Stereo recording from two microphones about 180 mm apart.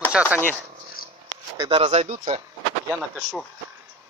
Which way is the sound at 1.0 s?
55° left (ahead or behind).